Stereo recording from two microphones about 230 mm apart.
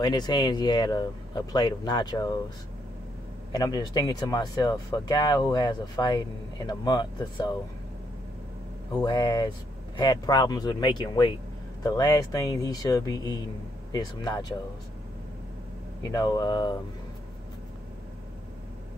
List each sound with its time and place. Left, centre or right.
0.0 s speech: centre
3.5 s speech: centre
8.9 s speech: centre
16.0 s speech: centre